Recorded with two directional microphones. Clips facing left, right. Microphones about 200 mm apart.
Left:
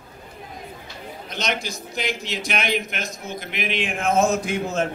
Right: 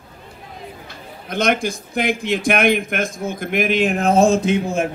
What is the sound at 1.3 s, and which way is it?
Speech, 55° right (ahead or behind).